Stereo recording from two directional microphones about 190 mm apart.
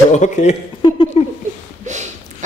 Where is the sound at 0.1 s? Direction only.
40° left (ahead or behind).